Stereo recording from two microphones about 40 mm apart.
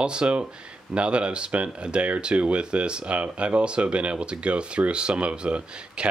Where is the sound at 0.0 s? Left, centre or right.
Right.